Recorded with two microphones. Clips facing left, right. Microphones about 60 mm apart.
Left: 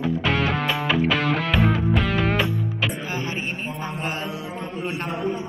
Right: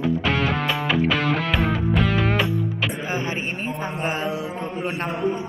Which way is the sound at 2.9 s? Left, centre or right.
Right.